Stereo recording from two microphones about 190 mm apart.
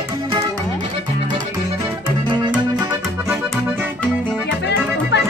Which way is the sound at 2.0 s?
25° right (ahead or behind).